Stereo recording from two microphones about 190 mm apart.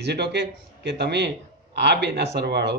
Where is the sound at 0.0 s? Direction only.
60° right (ahead or behind).